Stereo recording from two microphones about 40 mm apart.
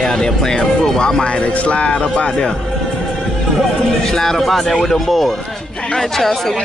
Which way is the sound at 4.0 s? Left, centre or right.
Centre.